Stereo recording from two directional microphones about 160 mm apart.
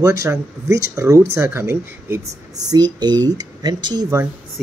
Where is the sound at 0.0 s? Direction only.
20° right (ahead or behind).